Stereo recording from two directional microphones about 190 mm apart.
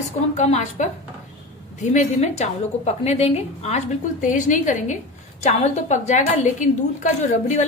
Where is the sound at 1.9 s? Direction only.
35° left (ahead or behind).